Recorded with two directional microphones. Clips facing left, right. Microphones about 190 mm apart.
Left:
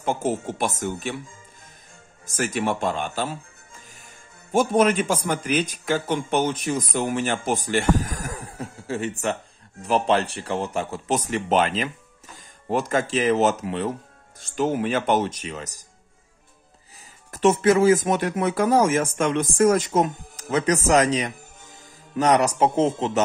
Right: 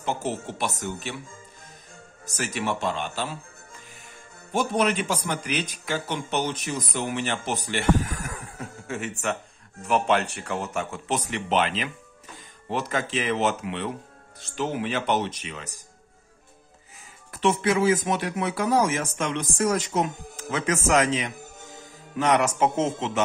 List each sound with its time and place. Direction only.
0.0 s speech: 50° left (ahead or behind)
2.2 s speech: 50° left (ahead or behind)
4.5 s a man's voice: 50° left (ahead or behind)
17.3 s a man's voice: 45° left (ahead or behind)